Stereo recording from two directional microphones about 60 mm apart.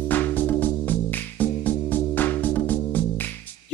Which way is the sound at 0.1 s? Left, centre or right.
Left.